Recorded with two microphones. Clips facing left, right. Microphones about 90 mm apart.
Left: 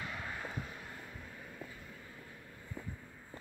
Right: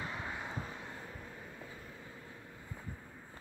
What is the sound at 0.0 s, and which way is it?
Vehicle, 25° right (ahead or behind).